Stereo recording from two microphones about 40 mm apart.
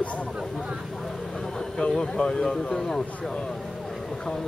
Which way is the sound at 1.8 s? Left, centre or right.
Left.